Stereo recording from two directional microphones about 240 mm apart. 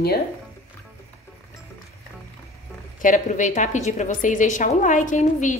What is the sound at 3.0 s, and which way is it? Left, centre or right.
A woman's voice, left.